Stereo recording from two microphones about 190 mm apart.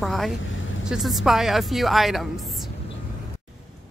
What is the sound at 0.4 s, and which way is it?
Speech, 90° left.